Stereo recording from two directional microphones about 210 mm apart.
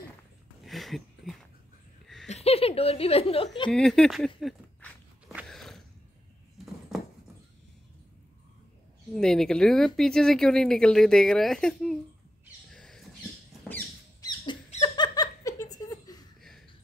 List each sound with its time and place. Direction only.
0.7 s a sound: centre (ahead or behind)
2.2 s a woman's voice: 30° left (ahead or behind)
3.7 s speech: 5° left (ahead or behind)
4.4 s biting: centre (ahead or behind)
6.9 s horse: centre (ahead or behind)
9.1 s speech: centre (ahead or behind)
12.7 s rodents: centre (ahead or behind)
13.7 s squeak: 10° left (ahead or behind)
14.4 s laughter: 20° left (ahead or behind)